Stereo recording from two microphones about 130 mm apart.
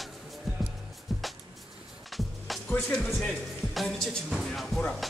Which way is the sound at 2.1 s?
Centre (ahead or behind).